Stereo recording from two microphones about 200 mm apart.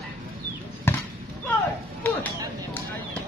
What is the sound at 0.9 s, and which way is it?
Basketball bounce, 10° left (ahead or behind).